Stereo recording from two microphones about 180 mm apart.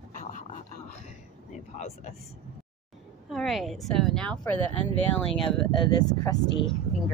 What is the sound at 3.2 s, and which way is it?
A woman's voice, centre (ahead or behind).